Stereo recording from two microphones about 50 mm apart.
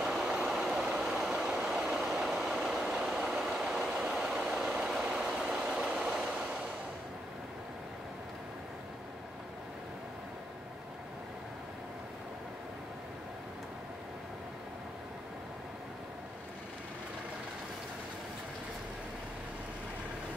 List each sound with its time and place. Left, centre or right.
0.0 s vehicle: centre
2.0 s train: centre
3.8 s vehicle: centre